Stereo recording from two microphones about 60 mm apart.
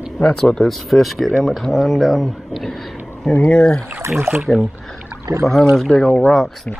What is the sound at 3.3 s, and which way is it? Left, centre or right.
Speech, left.